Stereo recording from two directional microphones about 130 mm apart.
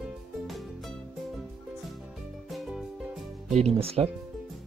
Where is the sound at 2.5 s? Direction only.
Centre (ahead or behind).